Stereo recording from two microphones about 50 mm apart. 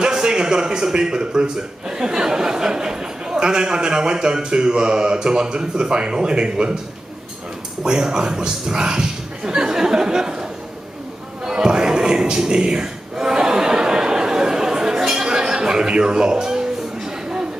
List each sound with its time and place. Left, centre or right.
0.0 s a man's voice: centre
7.8 s a man's voice: centre
11.4 s a sound: centre